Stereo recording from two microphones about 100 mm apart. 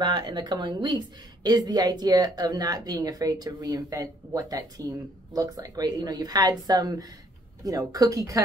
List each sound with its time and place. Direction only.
0.0 s a woman's voice: 45° right (ahead or behind)